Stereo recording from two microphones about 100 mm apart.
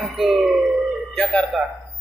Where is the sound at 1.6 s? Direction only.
10° right (ahead or behind).